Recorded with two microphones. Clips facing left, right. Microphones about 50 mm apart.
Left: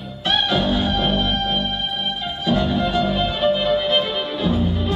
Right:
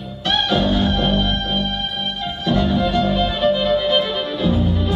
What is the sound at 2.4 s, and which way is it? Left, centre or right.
Music, centre.